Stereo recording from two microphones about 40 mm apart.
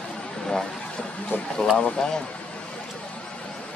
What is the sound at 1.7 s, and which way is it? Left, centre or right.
Speech, centre.